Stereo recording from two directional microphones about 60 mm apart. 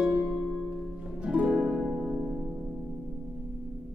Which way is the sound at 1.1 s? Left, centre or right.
Centre.